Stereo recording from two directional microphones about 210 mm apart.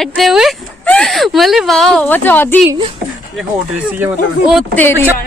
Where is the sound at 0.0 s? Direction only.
Centre (ahead or behind).